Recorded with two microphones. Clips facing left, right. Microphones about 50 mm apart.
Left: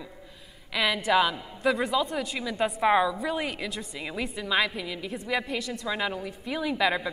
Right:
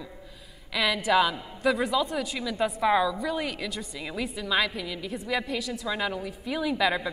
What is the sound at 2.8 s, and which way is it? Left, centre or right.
A woman's voice, left.